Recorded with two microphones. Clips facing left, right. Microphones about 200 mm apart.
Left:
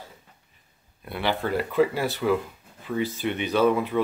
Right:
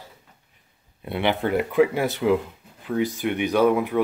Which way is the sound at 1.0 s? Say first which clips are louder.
Right 4 dB; 20° right (ahead or behind).